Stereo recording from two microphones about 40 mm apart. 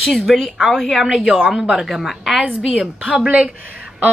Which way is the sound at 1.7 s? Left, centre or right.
Centre.